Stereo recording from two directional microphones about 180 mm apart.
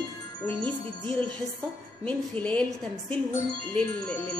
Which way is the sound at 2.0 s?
10° left (ahead or behind).